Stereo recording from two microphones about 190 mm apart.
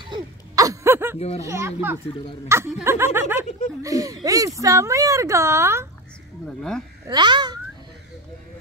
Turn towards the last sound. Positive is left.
turn(degrees=-25)  # may be behind; listen again after turning